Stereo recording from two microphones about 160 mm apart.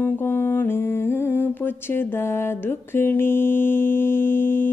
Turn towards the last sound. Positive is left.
turn(degrees=15)  # may be behind; listen again after turning